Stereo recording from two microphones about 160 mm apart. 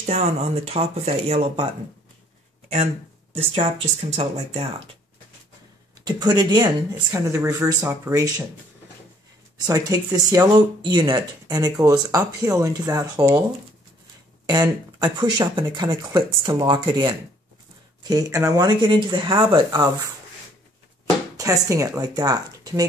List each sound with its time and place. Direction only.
0.0 s speech: 45° right (ahead or behind)
3.3 s speech: 40° right (ahead or behind)
6.0 s speech: 25° right (ahead or behind)
9.7 s speech: 20° right (ahead or behind)
14.4 s speech: 25° right (ahead or behind)
21.4 s speech: 20° right (ahead or behind)